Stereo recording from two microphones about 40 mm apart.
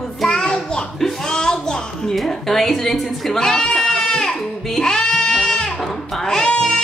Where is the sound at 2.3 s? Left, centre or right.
Centre.